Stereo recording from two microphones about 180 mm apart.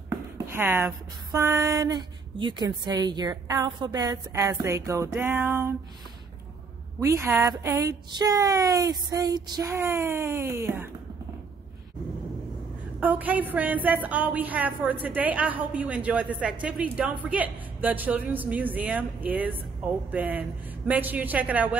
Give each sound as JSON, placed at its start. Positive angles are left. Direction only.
{"t": 0.5, "sound": "speech", "side_deg": -10}
{"t": 7.0, "sound": "speech", "side_deg": -15}
{"t": 13.0, "sound": "speech", "side_deg": -10}